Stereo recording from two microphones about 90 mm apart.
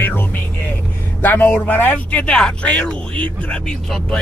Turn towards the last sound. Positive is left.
turn(degrees=15)  # may be behind; listen again after turning